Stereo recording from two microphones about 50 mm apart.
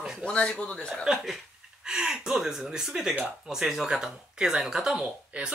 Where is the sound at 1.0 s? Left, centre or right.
Centre.